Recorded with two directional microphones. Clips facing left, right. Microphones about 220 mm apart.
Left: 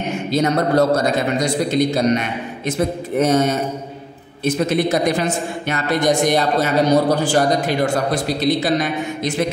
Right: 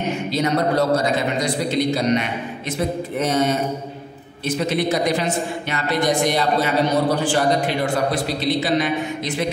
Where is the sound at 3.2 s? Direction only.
45° left (ahead or behind).